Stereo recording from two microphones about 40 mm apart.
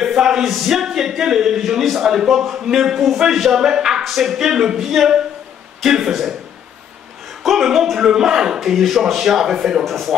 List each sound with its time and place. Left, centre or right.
0.0 s speech: centre
4.0 s speech: centre
7.4 s speech: centre
8.5 s speech: centre
9.8 s speech: centre